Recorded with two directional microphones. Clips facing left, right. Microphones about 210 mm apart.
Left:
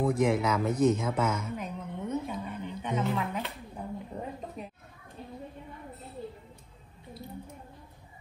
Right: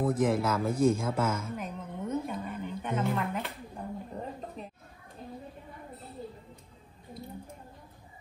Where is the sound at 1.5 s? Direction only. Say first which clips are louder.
Left 1 dB; centre (ahead or behind).